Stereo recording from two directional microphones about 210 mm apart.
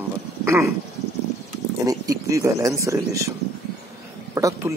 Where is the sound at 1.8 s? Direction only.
15° right (ahead or behind).